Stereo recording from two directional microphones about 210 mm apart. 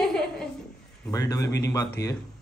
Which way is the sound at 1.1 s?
15° left (ahead or behind).